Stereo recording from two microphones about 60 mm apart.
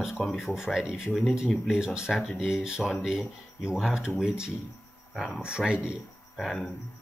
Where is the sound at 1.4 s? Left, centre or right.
Centre.